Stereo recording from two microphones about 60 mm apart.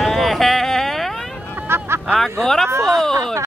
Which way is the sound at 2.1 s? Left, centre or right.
Centre.